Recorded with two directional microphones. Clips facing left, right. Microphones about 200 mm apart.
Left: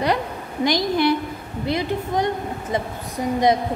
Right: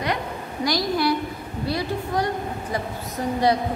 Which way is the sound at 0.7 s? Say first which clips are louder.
Left 3 dB; 20° left (ahead or behind).